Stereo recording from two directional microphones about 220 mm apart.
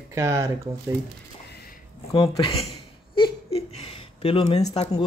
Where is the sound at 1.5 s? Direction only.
45° left (ahead or behind).